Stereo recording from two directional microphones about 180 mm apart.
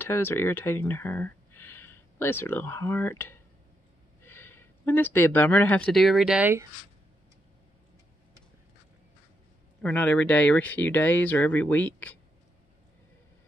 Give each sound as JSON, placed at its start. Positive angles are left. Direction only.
{"t": 0.0, "sound": "speech", "side_deg": 15}
{"t": 9.8, "sound": "speech", "side_deg": 10}